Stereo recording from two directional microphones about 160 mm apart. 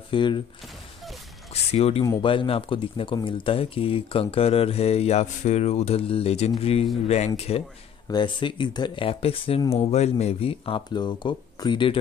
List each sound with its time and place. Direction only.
0.1 s speech: 30° left (ahead or behind)
1.5 s speech: 40° left (ahead or behind)
8.1 s speech: 30° left (ahead or behind)